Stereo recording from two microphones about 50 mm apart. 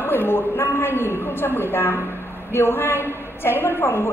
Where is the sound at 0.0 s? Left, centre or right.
Left.